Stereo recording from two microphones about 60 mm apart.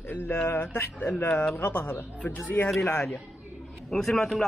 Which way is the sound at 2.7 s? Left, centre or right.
Left.